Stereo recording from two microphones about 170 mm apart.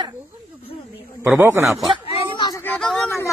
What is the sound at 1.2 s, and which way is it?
Speech, 10° right (ahead or behind).